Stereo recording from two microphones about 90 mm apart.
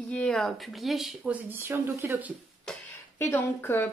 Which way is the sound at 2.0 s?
20° right (ahead or behind).